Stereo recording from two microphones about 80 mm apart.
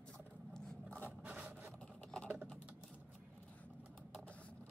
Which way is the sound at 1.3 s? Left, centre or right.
Centre.